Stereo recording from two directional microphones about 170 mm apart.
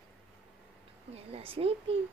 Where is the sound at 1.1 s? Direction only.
35° right (ahead or behind).